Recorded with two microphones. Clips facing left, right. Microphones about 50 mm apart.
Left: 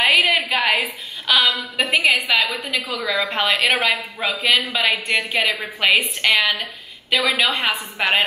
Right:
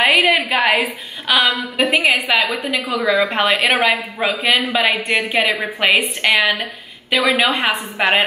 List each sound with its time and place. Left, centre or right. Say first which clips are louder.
0.2 s a sound: right 3 dB; centre
1.2 s a woman's voice: right 2 dB; centre
7.6 s a woman's voice: right 4 dB; centre